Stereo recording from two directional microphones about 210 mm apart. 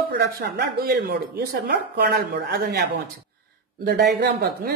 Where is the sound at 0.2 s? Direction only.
55° right (ahead or behind).